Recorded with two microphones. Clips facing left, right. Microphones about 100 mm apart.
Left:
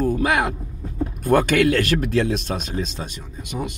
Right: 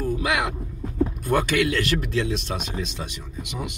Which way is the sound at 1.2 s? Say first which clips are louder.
Left 7 dB; 50° left (ahead or behind).